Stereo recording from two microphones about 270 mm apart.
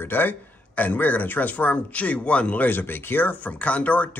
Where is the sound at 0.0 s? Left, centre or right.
Centre.